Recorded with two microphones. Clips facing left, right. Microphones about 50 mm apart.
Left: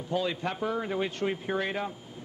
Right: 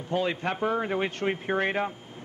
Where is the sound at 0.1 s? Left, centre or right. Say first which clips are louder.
Right 3 dB; right.